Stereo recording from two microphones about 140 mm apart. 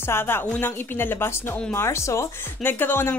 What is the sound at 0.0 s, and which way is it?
A woman's voice, 15° left (ahead or behind).